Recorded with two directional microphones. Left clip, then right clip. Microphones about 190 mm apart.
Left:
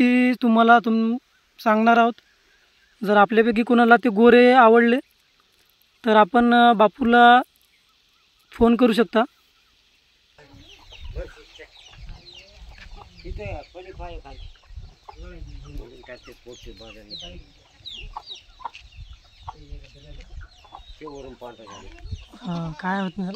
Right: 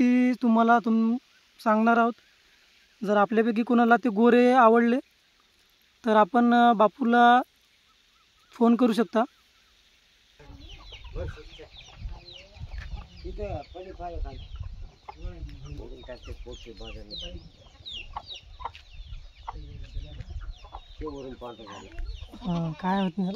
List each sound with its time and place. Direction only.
0.0 s speech: 15° left (ahead or behind)
8.5 s speech: 10° left (ahead or behind)
13.2 s chicken: 60° right (ahead or behind)
13.9 s speech: 45° right (ahead or behind)
16.1 s speech: 15° right (ahead or behind)
18.3 s chicken: centre (ahead or behind)
21.0 s chicken: 35° right (ahead or behind)
22.5 s speech: 15° right (ahead or behind)